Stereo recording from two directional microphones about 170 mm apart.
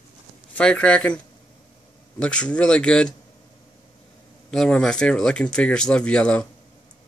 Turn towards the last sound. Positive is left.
turn(degrees=5)  # may be behind; listen again after turning